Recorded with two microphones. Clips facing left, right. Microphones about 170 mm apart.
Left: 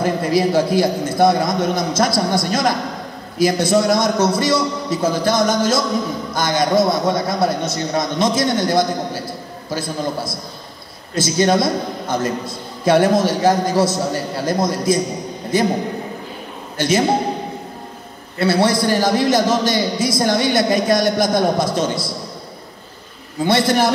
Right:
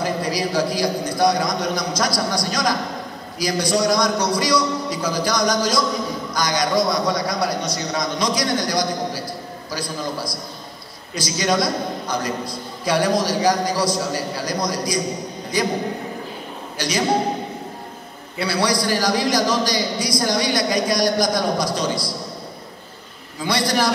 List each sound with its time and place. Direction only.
0.0 s a man's voice: 25° left (ahead or behind)
16.7 s a man's voice: 25° left (ahead or behind)
18.4 s a man's voice: 25° left (ahead or behind)
23.4 s a man's voice: 25° left (ahead or behind)